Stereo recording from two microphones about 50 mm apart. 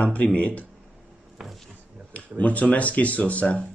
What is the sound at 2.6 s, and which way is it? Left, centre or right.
Speech, left.